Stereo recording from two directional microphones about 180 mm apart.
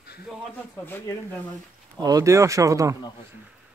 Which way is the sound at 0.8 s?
15° left (ahead or behind).